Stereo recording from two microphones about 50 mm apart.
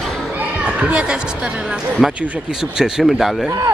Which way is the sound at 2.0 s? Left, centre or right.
Centre.